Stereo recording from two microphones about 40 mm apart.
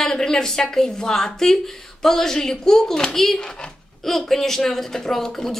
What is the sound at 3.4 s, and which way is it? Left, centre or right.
Speech, left.